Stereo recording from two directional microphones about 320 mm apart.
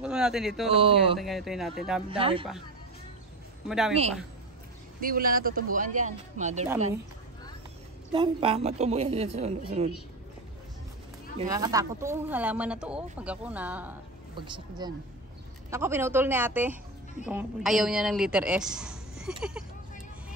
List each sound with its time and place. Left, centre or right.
0.0 s speech: centre
0.7 s a woman's voice: centre
1.1 s speech: centre
2.0 s a woman's voice: centre
3.6 s speech: centre
5.0 s speech: right
8.1 s speech: centre
11.3 s a woman's voice: centre